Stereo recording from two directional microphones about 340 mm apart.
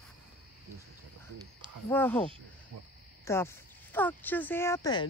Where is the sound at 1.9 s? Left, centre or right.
Centre.